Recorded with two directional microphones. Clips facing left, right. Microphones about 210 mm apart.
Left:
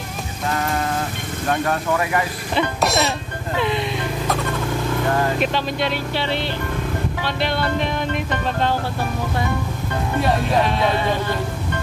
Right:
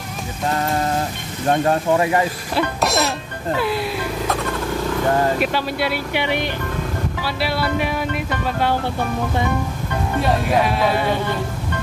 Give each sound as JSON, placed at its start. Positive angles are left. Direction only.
{"t": 1.5, "sound": "speech", "side_deg": -25}
{"t": 2.5, "sound": "a sound", "side_deg": 0}
{"t": 3.5, "sound": "speech", "side_deg": -5}
{"t": 5.4, "sound": "music", "side_deg": -10}
{"t": 10.2, "sound": "speech", "side_deg": 0}